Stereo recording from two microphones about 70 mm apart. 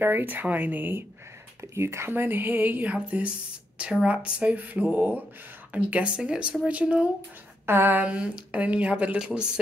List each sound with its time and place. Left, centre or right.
0.0 s speech: right
1.6 s speech: right; by 7.1 s centre
7.6 s speech: right; by 9.5 s centre